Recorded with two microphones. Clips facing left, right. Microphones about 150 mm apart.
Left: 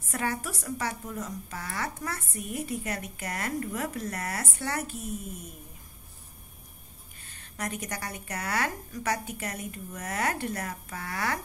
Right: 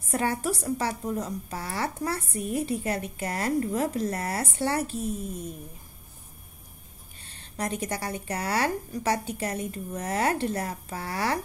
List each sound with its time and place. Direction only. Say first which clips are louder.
0.0 s a woman's voice: right 5 dB; 30° right (ahead or behind)
7.2 s a woman's voice: right 4 dB; 30° right (ahead or behind)